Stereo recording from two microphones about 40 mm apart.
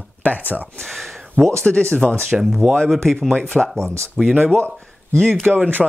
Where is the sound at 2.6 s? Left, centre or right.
Right.